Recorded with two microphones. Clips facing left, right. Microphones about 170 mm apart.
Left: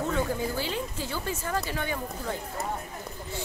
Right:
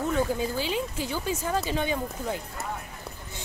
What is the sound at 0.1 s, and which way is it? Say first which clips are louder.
Speech: right 2 dB; 15° right (ahead or behind).